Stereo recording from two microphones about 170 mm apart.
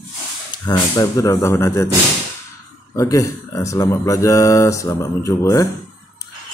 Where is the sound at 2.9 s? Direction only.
20° left (ahead or behind).